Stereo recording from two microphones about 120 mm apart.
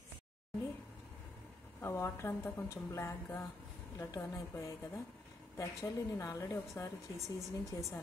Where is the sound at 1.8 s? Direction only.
20° left (ahead or behind).